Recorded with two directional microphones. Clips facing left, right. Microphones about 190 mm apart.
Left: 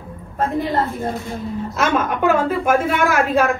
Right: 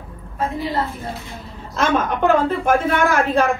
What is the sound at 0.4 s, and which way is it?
Speech, 50° left (ahead or behind).